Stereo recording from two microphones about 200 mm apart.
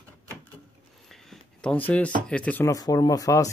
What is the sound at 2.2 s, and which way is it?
Speech, 5° left (ahead or behind).